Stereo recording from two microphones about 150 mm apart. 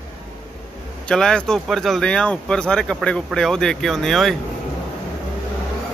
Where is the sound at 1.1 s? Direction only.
5° left (ahead or behind).